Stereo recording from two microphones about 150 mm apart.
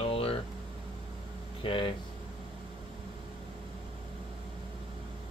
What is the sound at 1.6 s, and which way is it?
Speech, 35° left (ahead or behind).